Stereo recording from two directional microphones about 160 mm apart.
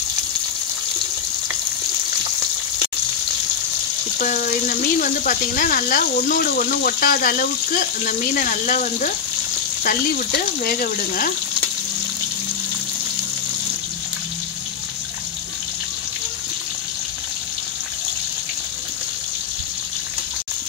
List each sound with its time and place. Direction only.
4.2 s speech: 60° left (ahead or behind)